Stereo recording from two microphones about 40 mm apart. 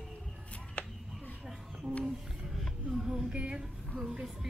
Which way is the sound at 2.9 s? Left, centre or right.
Centre.